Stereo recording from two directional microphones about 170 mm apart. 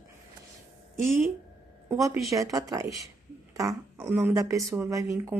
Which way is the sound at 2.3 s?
20° right (ahead or behind).